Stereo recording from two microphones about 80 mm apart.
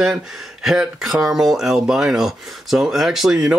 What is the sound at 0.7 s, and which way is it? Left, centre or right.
Speech, centre.